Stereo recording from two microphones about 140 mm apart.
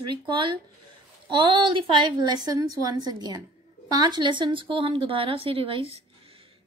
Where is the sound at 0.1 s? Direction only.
35° right (ahead or behind).